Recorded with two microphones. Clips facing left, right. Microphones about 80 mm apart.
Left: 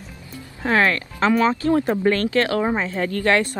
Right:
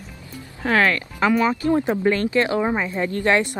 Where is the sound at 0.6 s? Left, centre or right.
Left.